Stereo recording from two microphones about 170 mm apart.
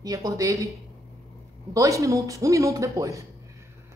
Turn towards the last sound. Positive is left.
turn(degrees=-20)  # may be behind; listen again after turning